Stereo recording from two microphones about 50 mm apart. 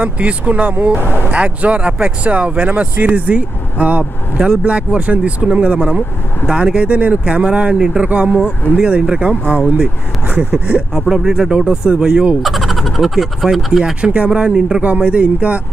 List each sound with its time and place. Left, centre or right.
0.0 s speech: right
1.0 s speech: left
1.3 s speech: right
10.2 s speech: right
11.0 s speech: centre
12.4 s speech: centre
14.1 s speech: right